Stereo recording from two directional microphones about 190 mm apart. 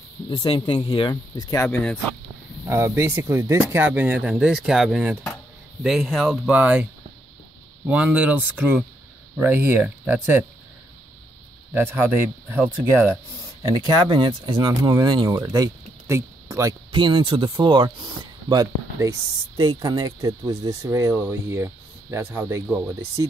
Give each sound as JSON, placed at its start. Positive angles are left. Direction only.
{"t": 0.3, "sound": "speech", "side_deg": 20}
{"t": 2.7, "sound": "speech", "side_deg": -15}
{"t": 11.7, "sound": "speech", "side_deg": -10}
{"t": 14.0, "sound": "speech", "side_deg": -25}